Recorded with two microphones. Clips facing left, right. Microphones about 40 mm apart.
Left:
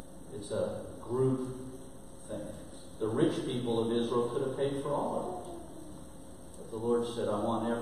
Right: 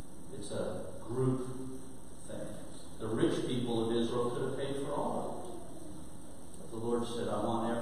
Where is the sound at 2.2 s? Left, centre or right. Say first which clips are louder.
Left 3 dB; centre.